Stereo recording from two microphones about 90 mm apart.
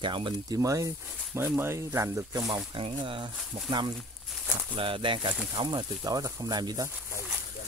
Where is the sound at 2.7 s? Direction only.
70° right (ahead or behind).